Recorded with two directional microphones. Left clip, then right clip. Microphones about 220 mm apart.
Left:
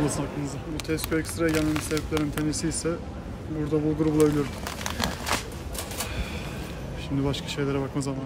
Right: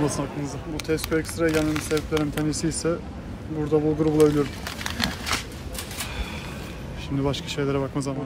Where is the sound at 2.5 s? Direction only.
Centre (ahead or behind).